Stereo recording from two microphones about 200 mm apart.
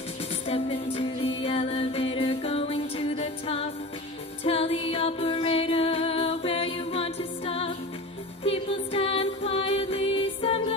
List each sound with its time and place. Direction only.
0.5 s music: 30° left (ahead or behind)